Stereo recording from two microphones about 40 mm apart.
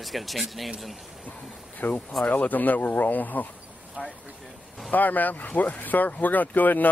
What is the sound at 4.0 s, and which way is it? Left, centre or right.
Speech, right.